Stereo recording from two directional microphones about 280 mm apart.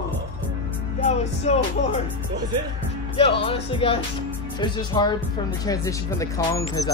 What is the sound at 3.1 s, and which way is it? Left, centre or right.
Speech, centre.